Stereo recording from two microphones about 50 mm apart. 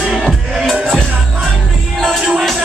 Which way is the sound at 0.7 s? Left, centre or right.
Centre.